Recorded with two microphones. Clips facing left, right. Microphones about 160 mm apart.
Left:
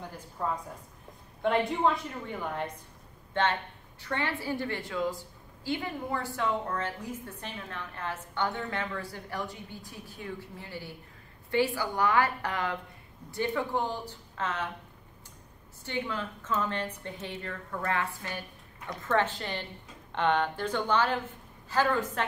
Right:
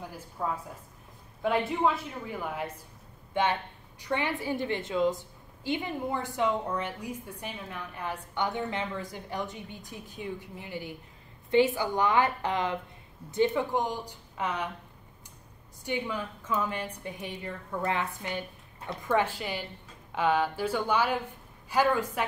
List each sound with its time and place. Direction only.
0.4 s a woman's voice: 5° right (ahead or behind)
15.8 s a woman's voice: 15° right (ahead or behind)